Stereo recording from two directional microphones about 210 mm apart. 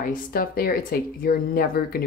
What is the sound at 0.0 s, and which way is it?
Speech, 45° left (ahead or behind).